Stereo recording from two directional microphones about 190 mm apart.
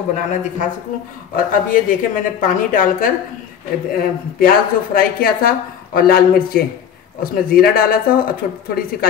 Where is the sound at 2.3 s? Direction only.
45° left (ahead or behind).